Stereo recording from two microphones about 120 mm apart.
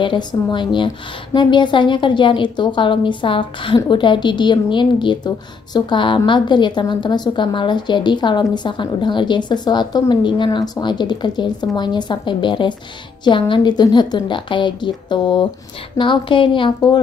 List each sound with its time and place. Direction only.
0.0 s a woman's voice: 45° left (ahead or behind)